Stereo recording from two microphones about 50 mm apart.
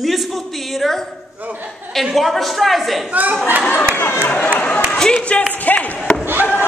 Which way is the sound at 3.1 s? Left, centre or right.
Right.